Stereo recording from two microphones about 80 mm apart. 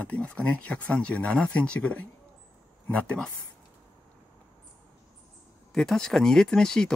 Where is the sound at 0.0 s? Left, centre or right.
Centre.